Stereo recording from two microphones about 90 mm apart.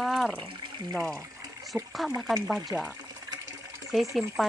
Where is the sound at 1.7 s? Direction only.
25° right (ahead or behind).